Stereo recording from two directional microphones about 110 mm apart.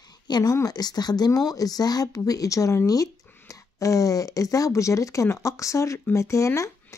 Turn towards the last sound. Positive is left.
turn(degrees=30)  # may be behind; listen again after turning